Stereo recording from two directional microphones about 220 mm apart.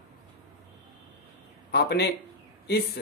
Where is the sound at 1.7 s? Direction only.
50° left (ahead or behind).